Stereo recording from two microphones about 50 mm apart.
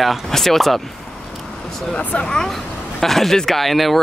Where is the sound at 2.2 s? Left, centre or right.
Centre.